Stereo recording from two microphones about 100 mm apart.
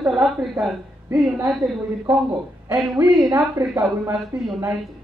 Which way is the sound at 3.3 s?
35° right (ahead or behind).